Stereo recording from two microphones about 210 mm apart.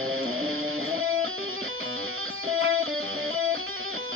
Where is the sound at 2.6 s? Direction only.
75° right (ahead or behind).